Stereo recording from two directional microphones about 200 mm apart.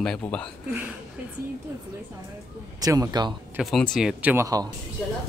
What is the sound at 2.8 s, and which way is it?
Speech, 20° right (ahead or behind).